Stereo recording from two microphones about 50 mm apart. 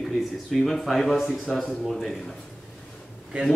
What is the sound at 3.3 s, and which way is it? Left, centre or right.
Speech, centre.